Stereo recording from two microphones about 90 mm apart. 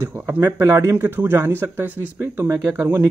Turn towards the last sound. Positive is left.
turn(degrees=-25)  # may be behind; listen again after turning